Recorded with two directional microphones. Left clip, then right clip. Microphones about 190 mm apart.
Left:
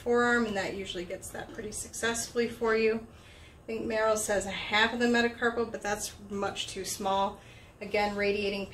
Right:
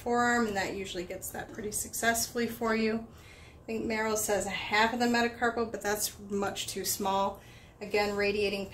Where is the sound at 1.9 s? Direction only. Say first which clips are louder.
Right 1 dB; 50° right (ahead or behind).